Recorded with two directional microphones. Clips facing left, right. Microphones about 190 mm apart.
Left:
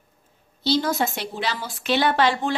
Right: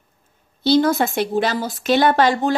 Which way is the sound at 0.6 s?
55° right (ahead or behind).